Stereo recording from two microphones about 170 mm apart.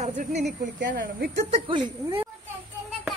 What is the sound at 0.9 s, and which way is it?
Speech, 55° right (ahead or behind).